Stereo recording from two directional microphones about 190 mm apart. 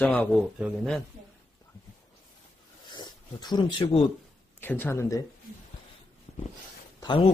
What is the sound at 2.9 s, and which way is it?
Speech, 20° left (ahead or behind).